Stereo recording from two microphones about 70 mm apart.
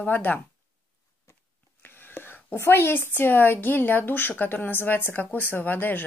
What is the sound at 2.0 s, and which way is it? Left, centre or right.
A woman's voice, left.